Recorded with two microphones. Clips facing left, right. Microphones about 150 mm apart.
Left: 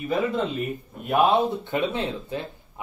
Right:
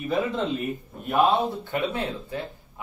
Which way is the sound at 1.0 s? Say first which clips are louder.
Left 1 dB; 20° left (ahead or behind).